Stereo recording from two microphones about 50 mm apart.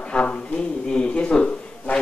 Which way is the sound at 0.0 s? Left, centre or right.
Left.